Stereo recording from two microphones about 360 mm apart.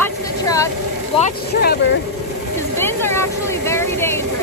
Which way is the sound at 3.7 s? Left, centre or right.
Centre.